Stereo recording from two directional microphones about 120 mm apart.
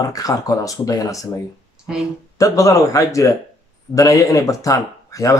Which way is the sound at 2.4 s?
30° left (ahead or behind).